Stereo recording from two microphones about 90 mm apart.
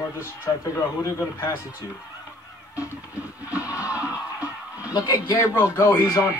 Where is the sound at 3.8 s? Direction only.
15° right (ahead or behind).